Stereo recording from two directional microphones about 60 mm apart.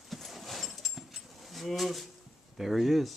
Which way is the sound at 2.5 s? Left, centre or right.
Centre.